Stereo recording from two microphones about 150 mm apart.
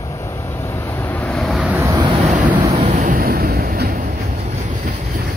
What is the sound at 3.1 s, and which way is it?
Vehicle, 90° right.